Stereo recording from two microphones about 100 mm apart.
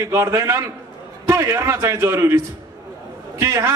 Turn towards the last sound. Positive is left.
turn(degrees=-25)  # may be behind; listen again after turning